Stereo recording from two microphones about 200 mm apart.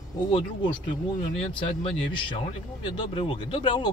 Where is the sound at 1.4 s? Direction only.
25° left (ahead or behind).